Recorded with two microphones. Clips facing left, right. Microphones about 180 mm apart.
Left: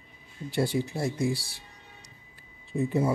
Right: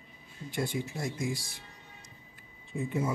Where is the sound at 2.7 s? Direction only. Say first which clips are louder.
Left 6 dB; 35° left (ahead or behind).